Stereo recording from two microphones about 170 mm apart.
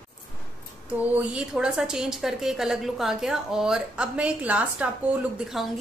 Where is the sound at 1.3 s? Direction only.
5° right (ahead or behind).